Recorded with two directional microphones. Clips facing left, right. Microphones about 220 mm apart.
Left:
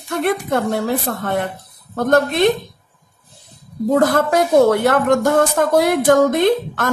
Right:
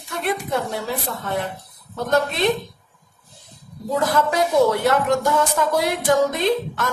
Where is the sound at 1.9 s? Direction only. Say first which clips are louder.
Left 6 dB; 55° left (ahead or behind).